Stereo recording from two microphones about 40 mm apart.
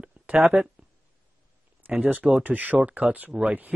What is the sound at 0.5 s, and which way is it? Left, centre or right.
Speech, right.